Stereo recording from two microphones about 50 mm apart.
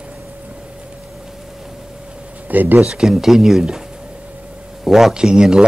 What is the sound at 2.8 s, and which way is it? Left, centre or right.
Speech, centre.